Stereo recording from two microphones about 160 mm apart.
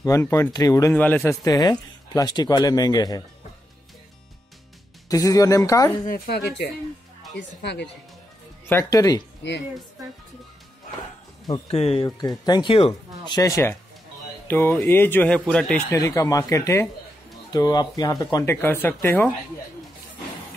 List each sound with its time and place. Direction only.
0.0 s speech: 20° left (ahead or behind)
0.9 s speech: 10° left (ahead or behind)
1.4 s speech: 25° left (ahead or behind)
5.0 s speech: 20° left (ahead or behind)
6.0 s a woman's voice: 65° left (ahead or behind)
7.3 s speech: 90° left
8.6 s speech: 20° left (ahead or behind)
11.6 s speech: 40° left (ahead or behind); by 15.8 s 5° left (ahead or behind)
15.9 s speech: 20° left (ahead or behind)